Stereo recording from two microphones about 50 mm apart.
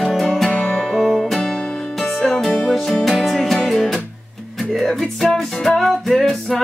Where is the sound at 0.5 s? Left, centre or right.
Left.